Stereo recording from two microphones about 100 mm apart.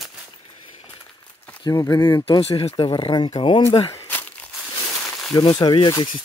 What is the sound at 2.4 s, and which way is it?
Speech, 90° left.